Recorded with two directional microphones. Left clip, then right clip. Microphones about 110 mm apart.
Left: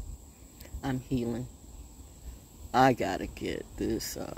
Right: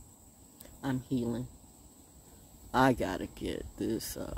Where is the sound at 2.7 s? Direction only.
30° right (ahead or behind).